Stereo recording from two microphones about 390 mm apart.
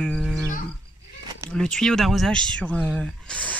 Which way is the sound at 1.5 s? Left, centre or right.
Centre.